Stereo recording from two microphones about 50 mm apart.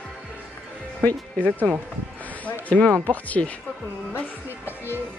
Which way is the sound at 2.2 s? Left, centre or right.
Left.